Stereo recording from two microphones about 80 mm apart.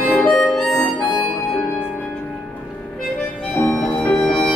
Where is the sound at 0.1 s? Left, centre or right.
Centre.